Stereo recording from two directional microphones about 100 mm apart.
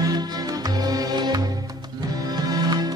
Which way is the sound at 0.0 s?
40° right (ahead or behind).